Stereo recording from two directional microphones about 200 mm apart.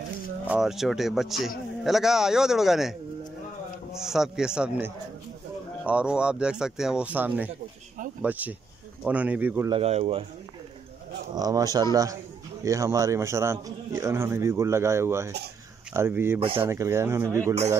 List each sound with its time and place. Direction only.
0.5 s a man's voice: centre (ahead or behind)
9.7 s speech: 30° right (ahead or behind)
11.3 s a man's voice: 20° right (ahead or behind)